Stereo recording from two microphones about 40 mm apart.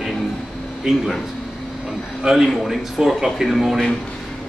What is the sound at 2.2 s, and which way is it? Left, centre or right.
Speech, centre.